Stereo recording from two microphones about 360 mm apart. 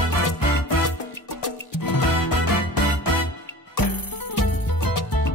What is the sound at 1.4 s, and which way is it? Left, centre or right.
Music, left.